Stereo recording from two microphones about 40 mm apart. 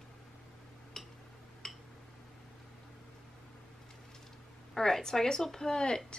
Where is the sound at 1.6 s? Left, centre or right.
Centre.